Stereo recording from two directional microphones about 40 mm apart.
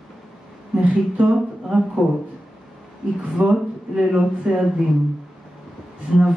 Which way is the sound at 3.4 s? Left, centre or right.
Right.